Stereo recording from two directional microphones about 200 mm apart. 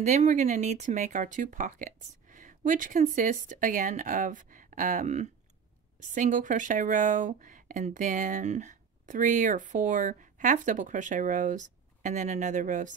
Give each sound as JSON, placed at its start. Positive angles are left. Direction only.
{"t": 0.0, "sound": "speech", "side_deg": -35}